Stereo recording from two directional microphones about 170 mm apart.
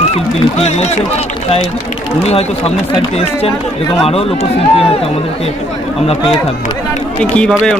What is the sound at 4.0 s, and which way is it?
Speech, 35° left (ahead or behind).